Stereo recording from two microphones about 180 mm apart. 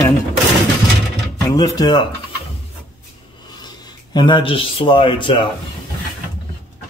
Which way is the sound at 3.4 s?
25° left (ahead or behind).